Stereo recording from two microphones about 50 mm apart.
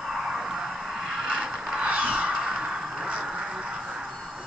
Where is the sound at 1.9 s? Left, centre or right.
Right.